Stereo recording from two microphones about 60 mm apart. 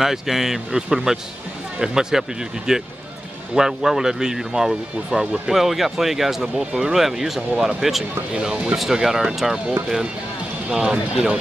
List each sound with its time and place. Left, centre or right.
0.0 s speech: centre
8.3 s speech: centre
8.7 s speech: centre